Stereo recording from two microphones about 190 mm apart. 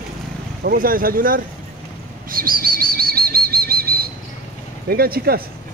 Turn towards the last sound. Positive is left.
turn(degrees=-55)  # may be behind; listen again after turning